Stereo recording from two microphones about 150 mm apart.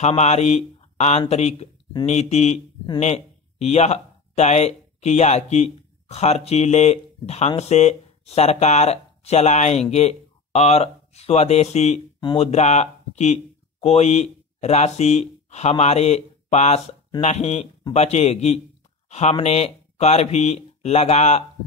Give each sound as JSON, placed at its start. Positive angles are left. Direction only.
{"t": 0.0, "sound": "mantra", "side_deg": 45}
{"t": 1.3, "sound": "speech", "side_deg": 45}